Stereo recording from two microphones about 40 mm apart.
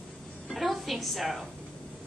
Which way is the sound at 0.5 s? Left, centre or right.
Centre.